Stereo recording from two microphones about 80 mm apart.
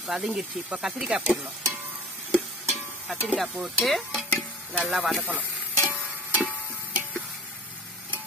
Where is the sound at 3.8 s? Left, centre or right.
Centre.